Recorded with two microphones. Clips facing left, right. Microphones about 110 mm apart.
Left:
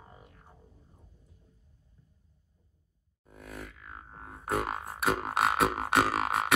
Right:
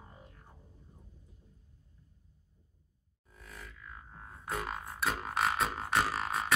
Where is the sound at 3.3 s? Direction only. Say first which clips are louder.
Left 7 dB; 60° left (ahead or behind).